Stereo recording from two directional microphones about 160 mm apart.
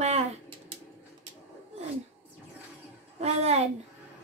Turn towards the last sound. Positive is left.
turn(degrees=-40)  # may be behind; listen again after turning